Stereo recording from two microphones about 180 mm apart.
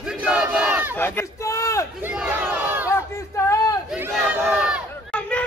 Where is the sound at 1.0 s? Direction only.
10° left (ahead or behind).